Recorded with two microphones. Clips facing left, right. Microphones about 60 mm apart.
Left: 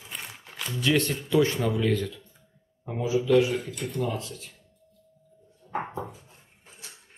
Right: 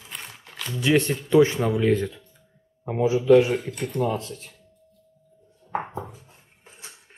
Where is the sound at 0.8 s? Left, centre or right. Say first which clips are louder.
Right 4 dB; right.